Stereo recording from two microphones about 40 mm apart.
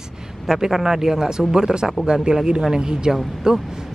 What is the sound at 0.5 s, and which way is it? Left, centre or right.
A man's voice, centre.